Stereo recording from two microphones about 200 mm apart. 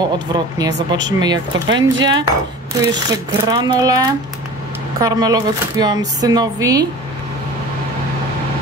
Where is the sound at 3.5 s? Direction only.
20° right (ahead or behind).